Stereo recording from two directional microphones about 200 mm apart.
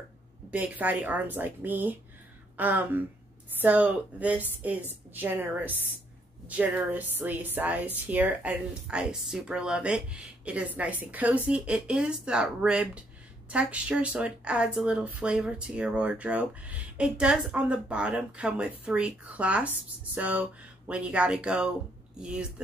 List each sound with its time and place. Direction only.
0.5 s a woman's voice: 5° right (ahead or behind)